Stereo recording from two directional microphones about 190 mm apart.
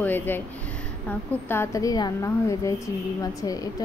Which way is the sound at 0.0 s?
10° left (ahead or behind).